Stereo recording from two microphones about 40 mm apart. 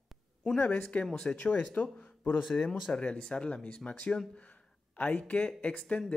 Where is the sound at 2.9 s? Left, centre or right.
Left.